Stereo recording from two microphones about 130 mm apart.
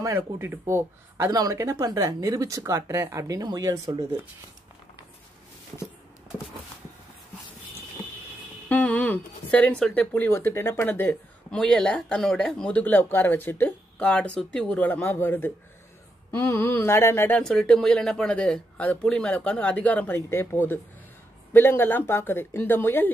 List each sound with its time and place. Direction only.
0.0 s speech: 20° right (ahead or behind)
8.6 s speech: 10° left (ahead or behind)
16.3 s a sound: 20° left (ahead or behind)
17.4 s speech: 5° left (ahead or behind)